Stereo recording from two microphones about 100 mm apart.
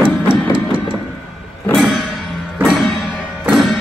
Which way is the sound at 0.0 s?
60° right (ahead or behind).